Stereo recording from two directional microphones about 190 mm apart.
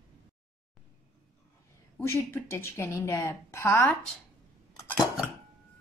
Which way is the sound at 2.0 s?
10° left (ahead or behind).